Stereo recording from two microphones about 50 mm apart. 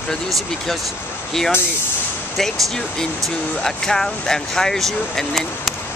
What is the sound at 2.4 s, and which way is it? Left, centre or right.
Speech, centre.